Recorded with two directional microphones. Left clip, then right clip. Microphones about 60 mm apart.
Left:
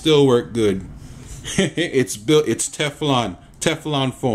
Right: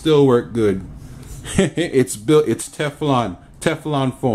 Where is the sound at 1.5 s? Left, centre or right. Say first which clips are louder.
Right 1 dB; right.